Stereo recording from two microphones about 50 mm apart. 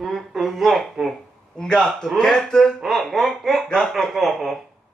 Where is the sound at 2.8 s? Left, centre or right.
Centre.